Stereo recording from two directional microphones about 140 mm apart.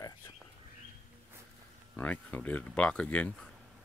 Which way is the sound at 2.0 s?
10° left (ahead or behind).